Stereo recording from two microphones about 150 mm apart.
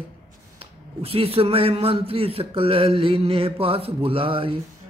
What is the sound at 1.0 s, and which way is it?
Speech, 40° right (ahead or behind).